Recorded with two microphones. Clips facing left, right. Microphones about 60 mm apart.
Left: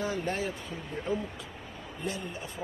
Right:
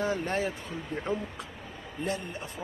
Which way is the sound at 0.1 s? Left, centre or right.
Right.